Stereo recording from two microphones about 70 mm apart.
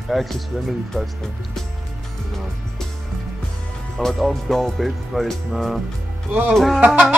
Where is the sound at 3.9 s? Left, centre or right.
Centre.